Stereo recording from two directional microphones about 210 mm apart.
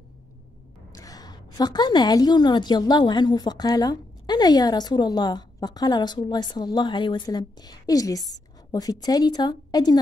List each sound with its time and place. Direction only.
0.9 s a woman's voice: 15° left (ahead or behind)